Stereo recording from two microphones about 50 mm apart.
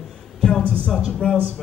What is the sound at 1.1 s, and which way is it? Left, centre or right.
Speech, centre.